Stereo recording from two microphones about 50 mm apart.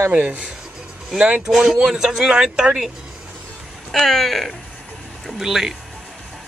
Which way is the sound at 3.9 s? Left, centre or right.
Centre.